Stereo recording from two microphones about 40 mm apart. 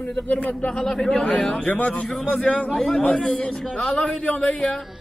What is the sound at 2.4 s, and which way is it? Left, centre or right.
Speech, left.